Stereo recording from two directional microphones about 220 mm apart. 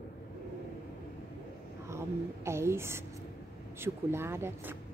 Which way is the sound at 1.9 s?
10° right (ahead or behind).